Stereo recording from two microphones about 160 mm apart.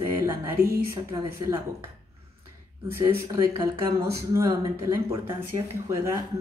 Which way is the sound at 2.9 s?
20° right (ahead or behind).